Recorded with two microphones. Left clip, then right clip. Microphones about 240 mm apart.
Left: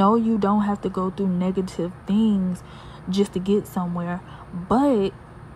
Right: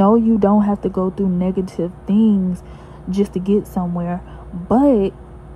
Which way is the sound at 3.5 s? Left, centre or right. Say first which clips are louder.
Right 5 dB; centre.